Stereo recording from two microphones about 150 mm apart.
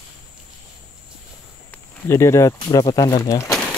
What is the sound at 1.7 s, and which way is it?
Speech, 15° left (ahead or behind).